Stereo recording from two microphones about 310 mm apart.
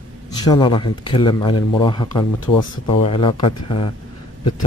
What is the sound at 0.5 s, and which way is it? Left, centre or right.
Speech, centre.